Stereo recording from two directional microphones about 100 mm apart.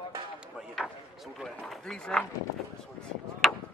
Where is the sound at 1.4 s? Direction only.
5° left (ahead or behind).